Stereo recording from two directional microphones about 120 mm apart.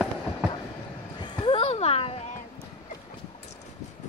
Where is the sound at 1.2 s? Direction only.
40° left (ahead or behind).